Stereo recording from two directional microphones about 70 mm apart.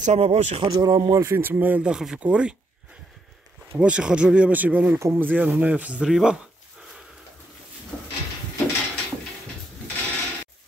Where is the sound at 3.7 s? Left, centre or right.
Centre.